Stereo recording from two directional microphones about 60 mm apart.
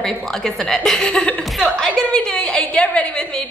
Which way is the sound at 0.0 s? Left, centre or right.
Centre.